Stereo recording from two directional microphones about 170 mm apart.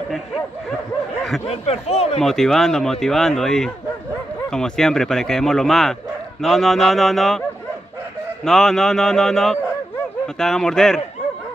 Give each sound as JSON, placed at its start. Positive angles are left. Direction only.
{"t": 0.1, "sound": "speech", "side_deg": 0}
{"t": 1.5, "sound": "speech", "side_deg": 40}
{"t": 2.1, "sound": "speech", "side_deg": 0}
{"t": 8.5, "sound": "speech", "side_deg": 0}